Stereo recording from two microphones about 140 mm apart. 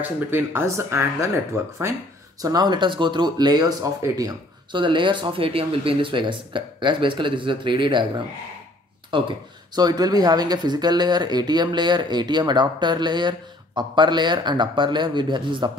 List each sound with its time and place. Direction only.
0.0 s speech: 15° right (ahead or behind); by 8.0 s 35° right (ahead or behind)
9.1 s speech: 35° right (ahead or behind)